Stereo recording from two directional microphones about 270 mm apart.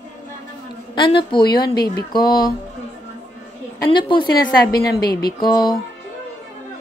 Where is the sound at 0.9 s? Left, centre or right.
Centre.